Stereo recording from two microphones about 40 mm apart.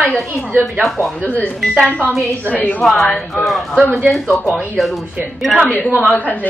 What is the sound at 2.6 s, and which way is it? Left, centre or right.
Speech, left.